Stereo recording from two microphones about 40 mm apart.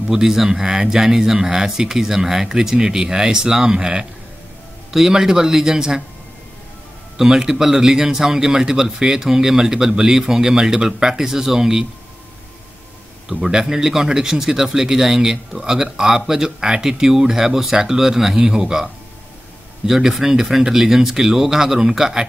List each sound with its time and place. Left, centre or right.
0.1 s speech: centre
7.2 s speech: centre
13.3 s speech: centre
19.9 s speech: centre